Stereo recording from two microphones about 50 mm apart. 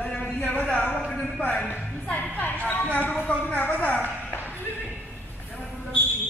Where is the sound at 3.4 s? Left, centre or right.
Left.